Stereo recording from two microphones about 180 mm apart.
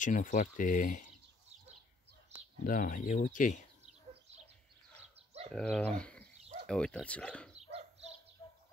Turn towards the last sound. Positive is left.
turn(degrees=5)  # may be behind; listen again after turning